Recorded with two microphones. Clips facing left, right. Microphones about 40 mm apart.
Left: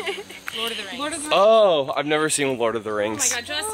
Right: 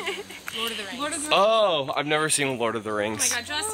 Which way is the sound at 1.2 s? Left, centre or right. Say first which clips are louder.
Left 5 dB; centre.